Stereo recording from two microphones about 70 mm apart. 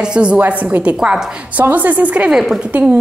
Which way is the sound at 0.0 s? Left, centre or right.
Centre.